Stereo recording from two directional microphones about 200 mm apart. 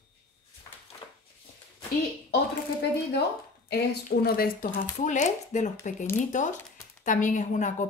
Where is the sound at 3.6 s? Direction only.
50° left (ahead or behind).